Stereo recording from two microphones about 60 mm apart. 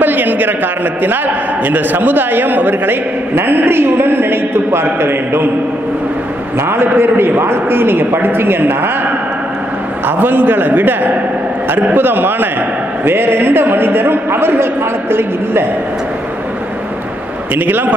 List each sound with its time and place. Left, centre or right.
0.0 s a man's voice: right
6.7 s a man's voice: right
10.0 s a man's voice: right
17.6 s a man's voice: right